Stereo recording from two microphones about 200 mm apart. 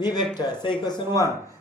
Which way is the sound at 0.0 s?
20° left (ahead or behind).